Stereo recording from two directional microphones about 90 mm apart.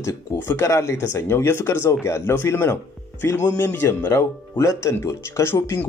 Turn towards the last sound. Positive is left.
turn(degrees=25)  # may be behind; listen again after turning